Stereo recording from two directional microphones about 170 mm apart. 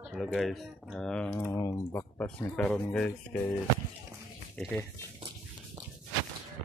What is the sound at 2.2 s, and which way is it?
Speech, 10° left (ahead or behind).